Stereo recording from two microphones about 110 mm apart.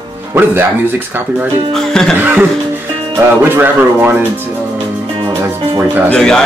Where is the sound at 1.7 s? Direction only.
5° left (ahead or behind).